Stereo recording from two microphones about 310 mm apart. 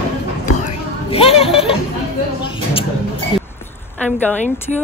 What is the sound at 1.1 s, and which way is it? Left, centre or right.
Chatter, centre.